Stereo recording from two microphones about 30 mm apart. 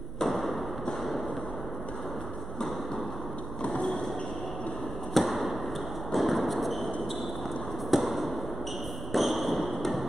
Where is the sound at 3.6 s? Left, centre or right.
Left.